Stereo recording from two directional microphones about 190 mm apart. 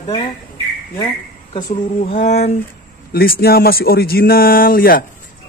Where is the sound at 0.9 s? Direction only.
25° left (ahead or behind).